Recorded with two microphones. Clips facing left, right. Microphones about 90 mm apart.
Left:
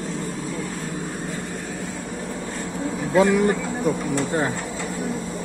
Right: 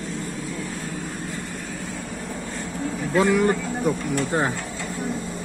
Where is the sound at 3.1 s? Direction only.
15° left (ahead or behind).